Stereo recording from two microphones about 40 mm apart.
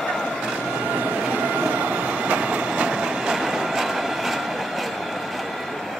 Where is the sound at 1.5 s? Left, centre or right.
Right; by 4.8 s centre.